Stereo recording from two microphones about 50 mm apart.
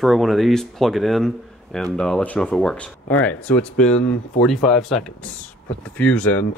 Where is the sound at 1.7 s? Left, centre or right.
Centre.